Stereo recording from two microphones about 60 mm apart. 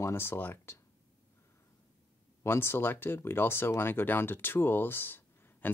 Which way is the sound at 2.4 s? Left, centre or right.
Left.